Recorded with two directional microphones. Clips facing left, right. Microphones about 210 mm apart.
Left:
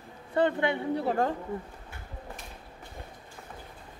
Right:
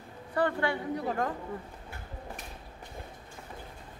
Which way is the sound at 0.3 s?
20° left (ahead or behind).